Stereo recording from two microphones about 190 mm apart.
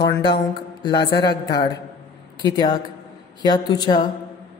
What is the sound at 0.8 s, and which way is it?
A man's voice, 20° left (ahead or behind).